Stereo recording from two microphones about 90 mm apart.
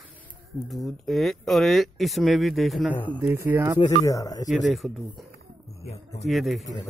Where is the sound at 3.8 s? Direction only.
40° left (ahead or behind).